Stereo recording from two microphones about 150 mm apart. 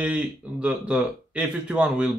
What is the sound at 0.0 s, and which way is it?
Speech, 10° right (ahead or behind).